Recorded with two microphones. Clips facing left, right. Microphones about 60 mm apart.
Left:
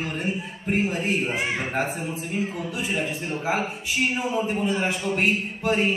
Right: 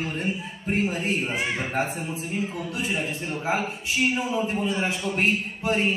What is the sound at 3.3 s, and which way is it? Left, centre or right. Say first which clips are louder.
A man's voice: even; centre.